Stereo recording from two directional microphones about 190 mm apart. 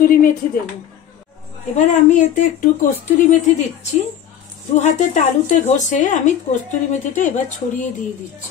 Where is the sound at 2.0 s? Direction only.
40° left (ahead or behind).